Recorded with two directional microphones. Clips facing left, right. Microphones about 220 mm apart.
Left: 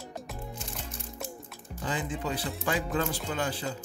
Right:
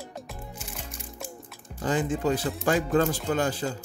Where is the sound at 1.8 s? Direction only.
45° right (ahead or behind).